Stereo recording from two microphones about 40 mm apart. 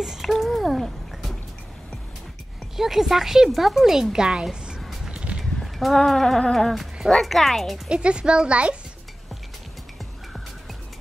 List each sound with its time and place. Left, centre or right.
0.0 s a sound: centre
2.7 s speech: centre
3.9 s speech: centre
5.1 s a sound: right
5.4 s a sound: centre
6.0 s music: centre
6.7 s speech: centre
7.1 s speech: centre
7.9 s a child's voice: right